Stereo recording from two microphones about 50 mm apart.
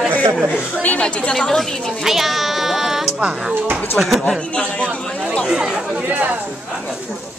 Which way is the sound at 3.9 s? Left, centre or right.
Centre.